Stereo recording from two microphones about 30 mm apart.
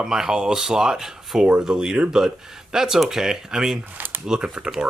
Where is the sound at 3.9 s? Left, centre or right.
Right.